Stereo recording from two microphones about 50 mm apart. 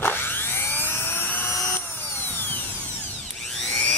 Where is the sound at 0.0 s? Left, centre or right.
Left.